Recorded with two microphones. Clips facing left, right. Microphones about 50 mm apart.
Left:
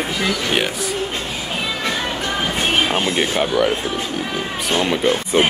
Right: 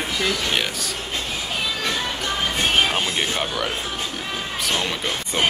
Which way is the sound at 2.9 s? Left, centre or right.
Centre.